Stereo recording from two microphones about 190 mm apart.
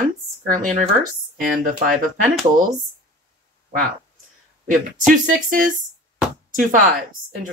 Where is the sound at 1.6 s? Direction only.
45° right (ahead or behind).